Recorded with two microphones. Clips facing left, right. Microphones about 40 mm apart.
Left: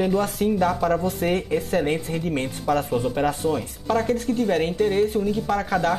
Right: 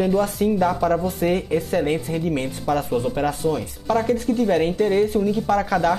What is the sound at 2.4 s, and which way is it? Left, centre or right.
Speech, left.